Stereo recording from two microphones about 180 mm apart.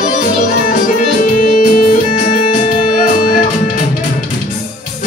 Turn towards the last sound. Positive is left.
turn(degrees=50)  # may be behind; listen again after turning